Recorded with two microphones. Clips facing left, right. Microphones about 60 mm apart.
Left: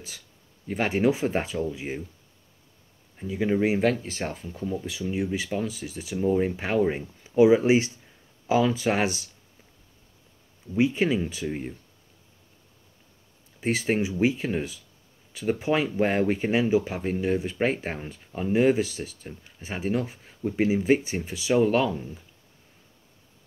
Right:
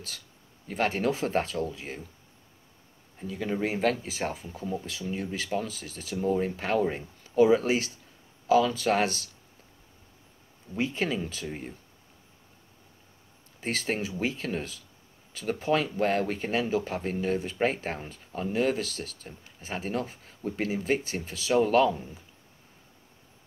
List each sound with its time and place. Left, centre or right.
0.7 s speech: centre
3.2 s speech: centre
10.8 s speech: centre
13.6 s speech: centre